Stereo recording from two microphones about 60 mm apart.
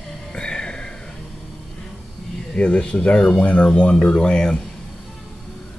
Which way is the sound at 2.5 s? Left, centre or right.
Centre.